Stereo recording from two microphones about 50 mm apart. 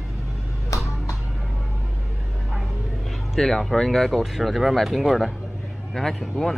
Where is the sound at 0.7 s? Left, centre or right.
Left.